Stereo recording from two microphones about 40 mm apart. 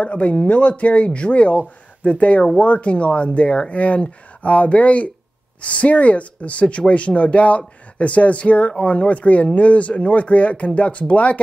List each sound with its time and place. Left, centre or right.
0.0 s speech: left